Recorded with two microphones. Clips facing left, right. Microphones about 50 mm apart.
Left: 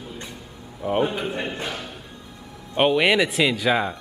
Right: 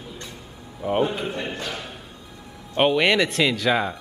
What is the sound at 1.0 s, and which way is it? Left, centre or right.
Speech, centre.